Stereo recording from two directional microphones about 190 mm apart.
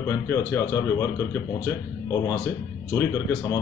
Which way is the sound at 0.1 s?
15° left (ahead or behind).